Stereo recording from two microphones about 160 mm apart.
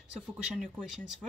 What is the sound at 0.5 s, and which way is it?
Speech, centre (ahead or behind).